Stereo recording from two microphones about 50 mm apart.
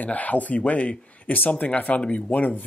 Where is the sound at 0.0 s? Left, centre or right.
Left.